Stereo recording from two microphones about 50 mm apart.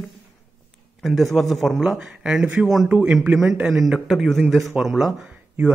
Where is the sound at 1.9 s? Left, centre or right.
Centre.